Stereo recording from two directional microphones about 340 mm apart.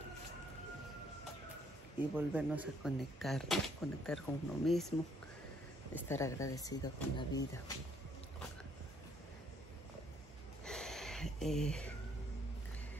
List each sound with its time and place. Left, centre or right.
2.0 s speech: centre
5.9 s speech: centre
10.6 s a sound: centre